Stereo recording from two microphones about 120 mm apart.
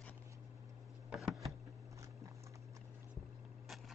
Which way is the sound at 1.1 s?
Centre (ahead or behind).